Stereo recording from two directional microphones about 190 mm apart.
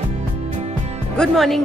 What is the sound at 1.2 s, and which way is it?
Speech, centre (ahead or behind).